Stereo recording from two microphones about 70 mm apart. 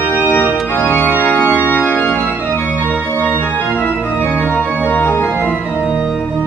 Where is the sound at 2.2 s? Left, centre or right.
Right.